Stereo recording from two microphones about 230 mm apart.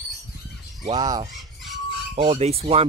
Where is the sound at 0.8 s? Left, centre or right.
Centre.